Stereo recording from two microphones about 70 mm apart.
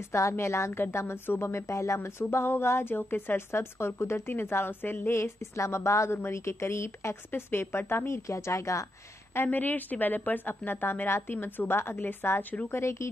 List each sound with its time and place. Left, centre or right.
0.1 s a woman's voice: left
9.3 s a woman's voice: left